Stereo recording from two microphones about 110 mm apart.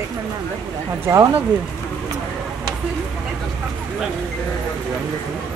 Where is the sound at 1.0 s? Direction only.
25° right (ahead or behind).